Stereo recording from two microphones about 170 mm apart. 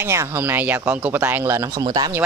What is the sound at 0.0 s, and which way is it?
Speech, 15° right (ahead or behind).